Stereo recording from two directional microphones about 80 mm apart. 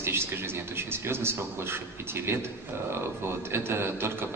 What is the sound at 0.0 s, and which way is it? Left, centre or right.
A man's voice, right.